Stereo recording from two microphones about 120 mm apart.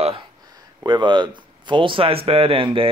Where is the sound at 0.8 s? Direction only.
40° right (ahead or behind).